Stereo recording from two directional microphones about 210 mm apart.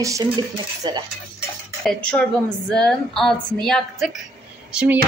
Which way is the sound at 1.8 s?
5° left (ahead or behind).